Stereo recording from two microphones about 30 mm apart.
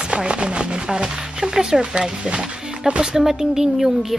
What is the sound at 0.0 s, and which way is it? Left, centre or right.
Speech, right.